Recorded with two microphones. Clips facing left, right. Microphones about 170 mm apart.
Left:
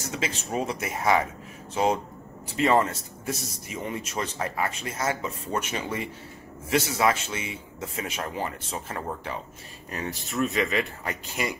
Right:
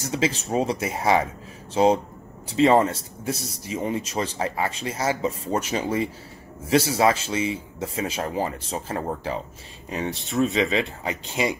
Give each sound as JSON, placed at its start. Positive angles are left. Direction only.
{"t": 0.0, "sound": "speech", "side_deg": -30}